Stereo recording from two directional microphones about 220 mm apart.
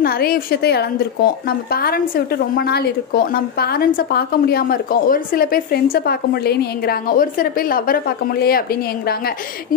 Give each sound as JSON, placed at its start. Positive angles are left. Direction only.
{"t": 0.0, "sound": "a woman's voice", "side_deg": 45}